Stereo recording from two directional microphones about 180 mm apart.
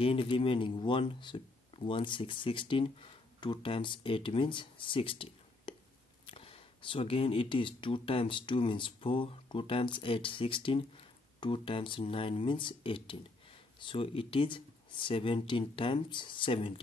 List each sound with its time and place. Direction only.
0.0 s speech: 30° left (ahead or behind)